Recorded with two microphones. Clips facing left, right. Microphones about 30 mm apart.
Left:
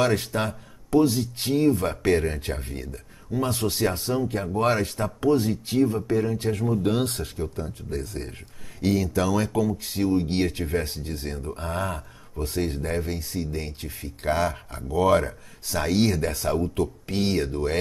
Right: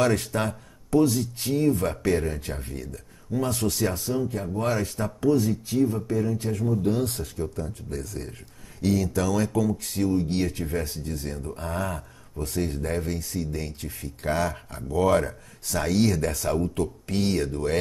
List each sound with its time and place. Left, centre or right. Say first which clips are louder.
0.0 s speech: even; centre
3.9 s speech: left 2 dB; left
6.8 s speech: left 1 dB; left
7.5 s speech: left 1 dB; left
8.8 s speech: left 1 dB; centre
10.0 s speech: left 2 dB; left
12.8 s speech: even; centre
13.1 s speech: even; left
14.2 s speech: left 2 dB; centre